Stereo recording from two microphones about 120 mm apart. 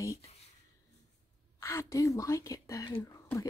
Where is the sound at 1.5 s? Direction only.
25° left (ahead or behind).